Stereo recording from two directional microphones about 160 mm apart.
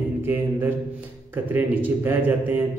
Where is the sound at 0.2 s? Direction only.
15° right (ahead or behind).